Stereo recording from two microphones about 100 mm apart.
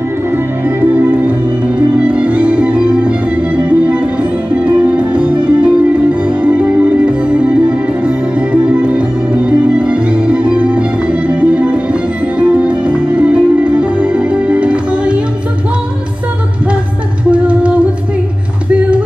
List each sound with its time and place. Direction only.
0.7 s music: 20° right (ahead or behind)
17.3 s music: 15° right (ahead or behind)